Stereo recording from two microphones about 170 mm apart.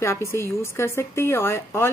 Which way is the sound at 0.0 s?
15° left (ahead or behind).